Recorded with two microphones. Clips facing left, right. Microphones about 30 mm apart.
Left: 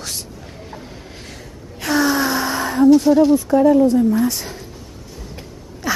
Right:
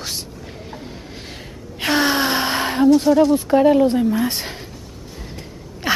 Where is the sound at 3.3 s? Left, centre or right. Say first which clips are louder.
Left 1 dB; right.